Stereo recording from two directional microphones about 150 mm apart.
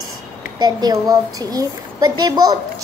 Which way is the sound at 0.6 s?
25° right (ahead or behind).